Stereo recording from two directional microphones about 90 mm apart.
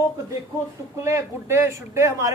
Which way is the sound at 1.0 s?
30° right (ahead or behind).